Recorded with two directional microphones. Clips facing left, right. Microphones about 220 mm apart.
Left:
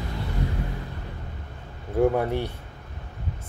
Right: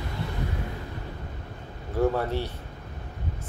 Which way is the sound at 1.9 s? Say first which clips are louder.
Left 3 dB; 15° left (ahead or behind).